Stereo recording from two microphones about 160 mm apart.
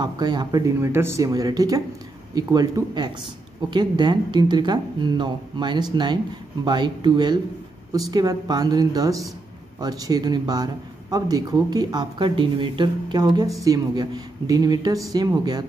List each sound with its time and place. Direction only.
0.0 s speech: 25° right (ahead or behind)